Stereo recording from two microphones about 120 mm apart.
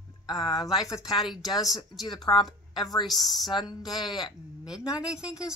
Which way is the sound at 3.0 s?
Centre (ahead or behind).